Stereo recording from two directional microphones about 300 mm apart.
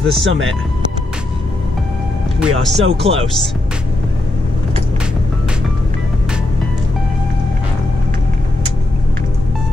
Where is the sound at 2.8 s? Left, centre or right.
Centre.